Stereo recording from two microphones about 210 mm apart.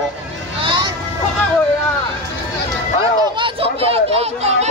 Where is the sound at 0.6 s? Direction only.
25° right (ahead or behind).